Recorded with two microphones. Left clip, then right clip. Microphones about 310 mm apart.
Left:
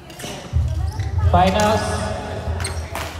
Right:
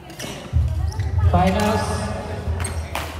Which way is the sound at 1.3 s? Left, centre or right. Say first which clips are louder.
Left 4 dB; centre.